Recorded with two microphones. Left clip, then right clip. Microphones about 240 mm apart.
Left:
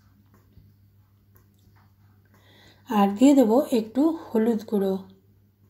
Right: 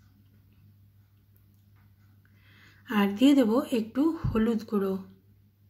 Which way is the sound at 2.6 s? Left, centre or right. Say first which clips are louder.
Left 6 dB; centre.